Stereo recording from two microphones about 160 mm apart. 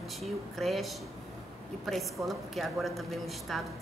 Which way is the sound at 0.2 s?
Centre (ahead or behind).